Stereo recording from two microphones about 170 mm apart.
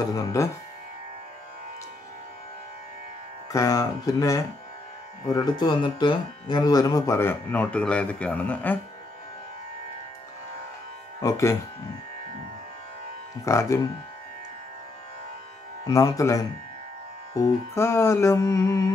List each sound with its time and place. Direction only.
0.1 s music: 20° left (ahead or behind)
3.5 s music: 20° left (ahead or behind)
5.3 s speech: 25° left (ahead or behind); by 8.7 s 10° left (ahead or behind)
11.1 s speech: 20° left (ahead or behind)
13.5 s speech: 15° left (ahead or behind)
15.8 s music: 20° left (ahead or behind)